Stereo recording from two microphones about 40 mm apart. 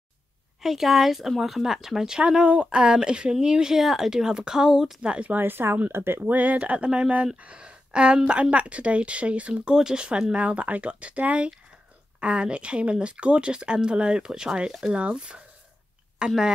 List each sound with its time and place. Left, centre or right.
0.6 s speech: centre
2.1 s speech: right
3.7 s speech: centre
5.0 s speech: right
5.4 s speech: right
5.9 s speech: right
6.3 s speech: right
9.8 s speech: centre
10.3 s speech: right
16.2 s speech: centre